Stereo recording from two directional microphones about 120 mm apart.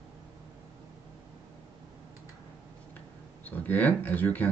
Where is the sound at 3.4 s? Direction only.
15° left (ahead or behind).